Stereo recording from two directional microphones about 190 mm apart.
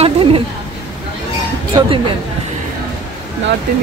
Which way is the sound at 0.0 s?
30° right (ahead or behind).